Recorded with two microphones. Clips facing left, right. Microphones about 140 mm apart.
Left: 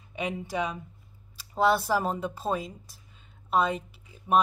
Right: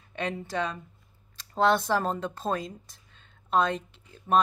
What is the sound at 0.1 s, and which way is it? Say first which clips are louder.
Speech: even; 10° left (ahead or behind).